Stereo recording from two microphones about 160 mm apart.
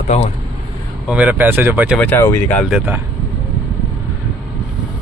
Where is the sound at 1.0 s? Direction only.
10° right (ahead or behind).